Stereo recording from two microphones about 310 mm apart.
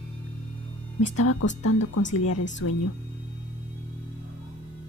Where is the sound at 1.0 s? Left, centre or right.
Left.